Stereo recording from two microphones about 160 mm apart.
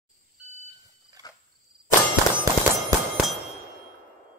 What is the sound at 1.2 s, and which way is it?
Cricket, 25° left (ahead or behind).